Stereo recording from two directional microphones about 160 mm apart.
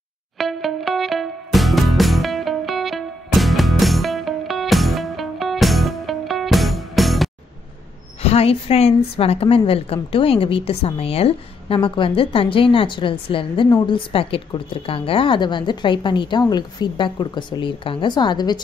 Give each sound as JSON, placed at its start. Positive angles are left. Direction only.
{"t": 0.4, "sound": "music", "side_deg": 0}
{"t": 8.2, "sound": "a woman's voice", "side_deg": 40}